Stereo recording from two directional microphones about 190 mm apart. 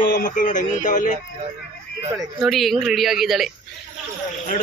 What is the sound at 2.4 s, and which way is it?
Speech, centre (ahead or behind).